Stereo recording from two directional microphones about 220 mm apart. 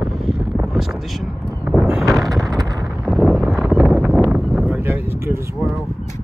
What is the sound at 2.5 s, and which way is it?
Wind noise, 15° right (ahead or behind).